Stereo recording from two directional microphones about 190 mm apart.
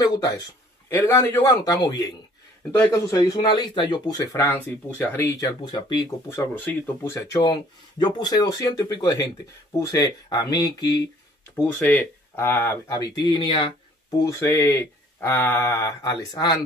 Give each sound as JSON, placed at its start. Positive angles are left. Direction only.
{"t": 0.0, "sound": "a man's voice", "side_deg": 20}
{"t": 5.6, "sound": "a man's voice", "side_deg": 25}
{"t": 11.6, "sound": "speech", "side_deg": 10}